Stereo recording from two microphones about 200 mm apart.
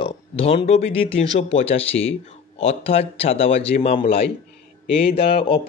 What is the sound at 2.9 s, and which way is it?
Speech, 30° left (ahead or behind).